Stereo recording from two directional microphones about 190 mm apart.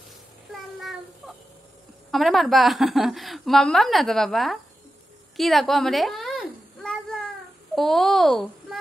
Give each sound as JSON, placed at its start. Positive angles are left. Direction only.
{"t": 0.5, "sound": "child singing", "side_deg": 0}
{"t": 2.0, "sound": "a woman's voice", "side_deg": 0}
{"t": 5.4, "sound": "a sound", "side_deg": 0}
{"t": 7.7, "sound": "a woman's voice", "side_deg": 0}